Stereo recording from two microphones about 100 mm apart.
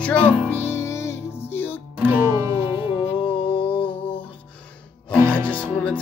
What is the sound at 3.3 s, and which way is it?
Music, 65° left (ahead or behind).